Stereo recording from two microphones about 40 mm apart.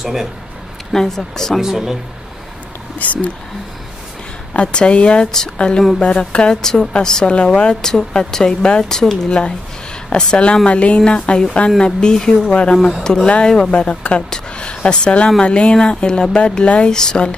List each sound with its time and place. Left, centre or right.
0.0 s speech: centre
0.9 s speech: centre
1.6 s speech: centre
3.0 s speech: left
4.6 s speech: left
6.6 s speech: centre
10.3 s speech: left
16.8 s speech: centre